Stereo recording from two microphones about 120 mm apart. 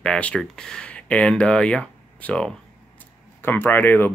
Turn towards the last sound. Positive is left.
turn(degrees=15)  # may be behind; listen again after turning